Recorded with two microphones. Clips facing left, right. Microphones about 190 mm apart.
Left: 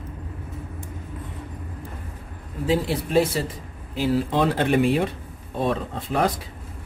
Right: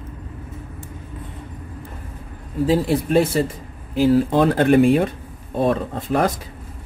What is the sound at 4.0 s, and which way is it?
Speech, 50° right (ahead or behind).